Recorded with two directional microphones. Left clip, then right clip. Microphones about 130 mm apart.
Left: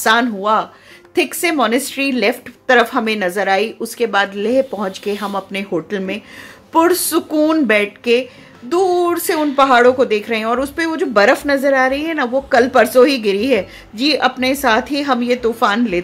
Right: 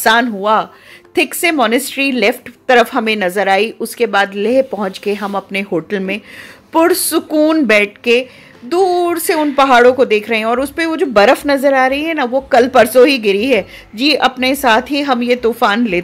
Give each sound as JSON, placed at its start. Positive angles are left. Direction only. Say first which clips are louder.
{"t": 0.0, "sound": "a woman's voice", "louder": "right 2 dB", "side_deg": -25}
{"t": 6.7, "sound": "a woman's voice", "louder": "right 2 dB", "side_deg": -25}
{"t": 9.6, "sound": "a woman's voice", "louder": "right 2 dB", "side_deg": -35}